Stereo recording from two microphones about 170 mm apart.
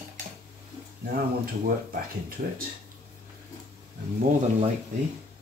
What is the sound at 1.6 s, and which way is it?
Speech, 60° right (ahead or behind).